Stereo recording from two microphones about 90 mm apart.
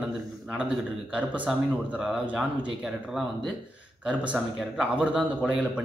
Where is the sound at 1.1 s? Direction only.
15° right (ahead or behind).